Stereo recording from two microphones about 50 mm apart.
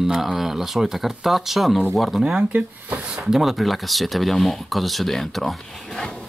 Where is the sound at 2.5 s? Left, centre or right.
Right.